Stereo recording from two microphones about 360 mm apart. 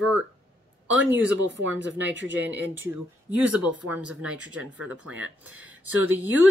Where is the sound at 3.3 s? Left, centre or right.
Centre.